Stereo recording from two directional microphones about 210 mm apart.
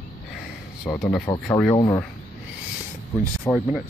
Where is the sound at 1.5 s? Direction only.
5° left (ahead or behind).